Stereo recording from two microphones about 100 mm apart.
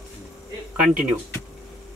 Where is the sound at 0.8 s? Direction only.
10° right (ahead or behind).